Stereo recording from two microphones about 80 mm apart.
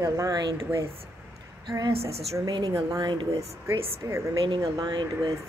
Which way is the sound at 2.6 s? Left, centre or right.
Right.